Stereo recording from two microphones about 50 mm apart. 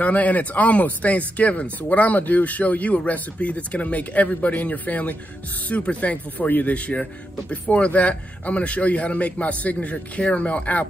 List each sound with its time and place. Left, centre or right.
0.0 s speech: left